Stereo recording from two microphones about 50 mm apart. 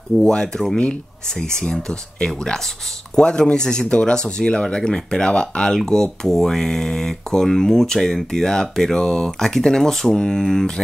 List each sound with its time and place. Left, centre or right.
0.2 s speech: centre